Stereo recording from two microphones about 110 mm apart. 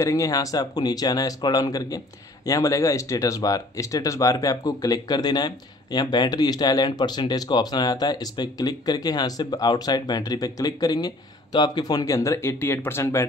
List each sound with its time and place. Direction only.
0.0 s speech: 30° left (ahead or behind)